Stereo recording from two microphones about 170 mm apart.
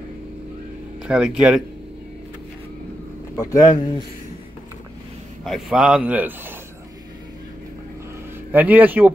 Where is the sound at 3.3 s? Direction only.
20° left (ahead or behind).